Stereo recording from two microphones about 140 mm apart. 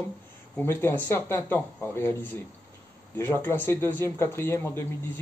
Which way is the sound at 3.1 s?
15° left (ahead or behind).